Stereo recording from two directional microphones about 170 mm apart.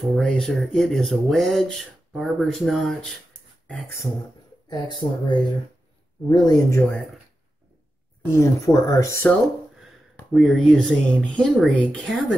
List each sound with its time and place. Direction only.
0.1 s speech: centre (ahead or behind)
4.6 s speech: 25° left (ahead or behind)
8.4 s speech: 15° left (ahead or behind)
10.3 s speech: centre (ahead or behind)